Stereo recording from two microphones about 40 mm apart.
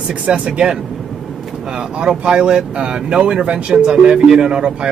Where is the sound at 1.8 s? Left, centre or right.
Centre.